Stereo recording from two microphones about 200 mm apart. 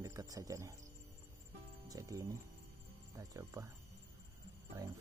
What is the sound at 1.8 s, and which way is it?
Speech, 15° right (ahead or behind).